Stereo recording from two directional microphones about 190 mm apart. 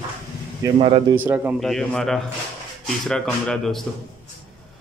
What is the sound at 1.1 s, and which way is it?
Speech, 10° right (ahead or behind).